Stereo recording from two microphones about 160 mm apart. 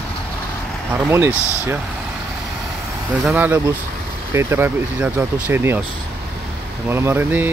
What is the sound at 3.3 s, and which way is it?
Speech, 10° right (ahead or behind).